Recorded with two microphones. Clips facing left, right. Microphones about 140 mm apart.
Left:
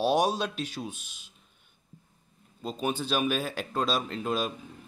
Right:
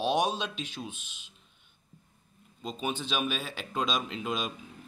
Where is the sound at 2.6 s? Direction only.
40° left (ahead or behind).